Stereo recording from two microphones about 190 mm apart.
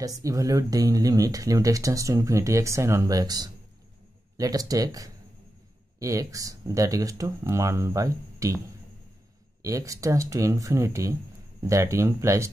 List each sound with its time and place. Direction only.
0.0 s speech: 20° right (ahead or behind)
9.6 s speech: 15° right (ahead or behind)